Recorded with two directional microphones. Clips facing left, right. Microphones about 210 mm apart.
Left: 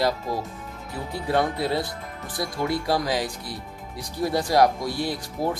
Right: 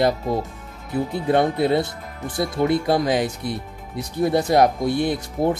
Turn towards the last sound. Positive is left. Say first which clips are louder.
# right 6 dB
turn(degrees=-25)  # may be behind; listen again after turning